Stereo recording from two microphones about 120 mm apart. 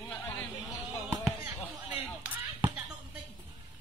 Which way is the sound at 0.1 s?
10° left (ahead or behind).